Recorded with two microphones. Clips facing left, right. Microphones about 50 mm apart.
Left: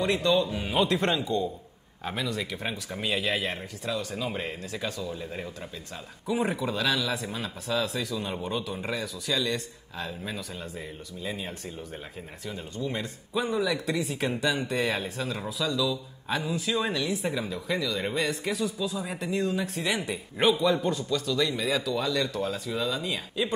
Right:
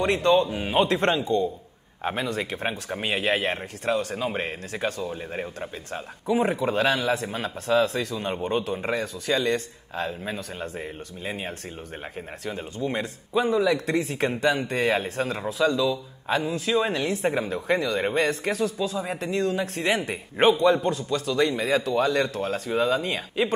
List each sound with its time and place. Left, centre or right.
0.0 s a man's voice: right
12.8 s speech: right
20.1 s a man's voice: right
20.5 s a man's voice: centre
21.1 s speech: right